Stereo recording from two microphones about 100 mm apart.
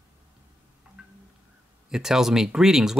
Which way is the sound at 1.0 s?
10° right (ahead or behind).